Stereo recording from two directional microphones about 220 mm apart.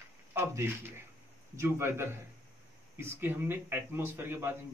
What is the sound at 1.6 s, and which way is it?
Speech, 10° right (ahead or behind).